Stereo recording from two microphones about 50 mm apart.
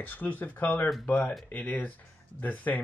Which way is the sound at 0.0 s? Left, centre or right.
Left.